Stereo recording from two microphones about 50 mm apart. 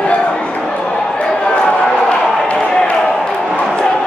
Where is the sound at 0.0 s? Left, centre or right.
Left.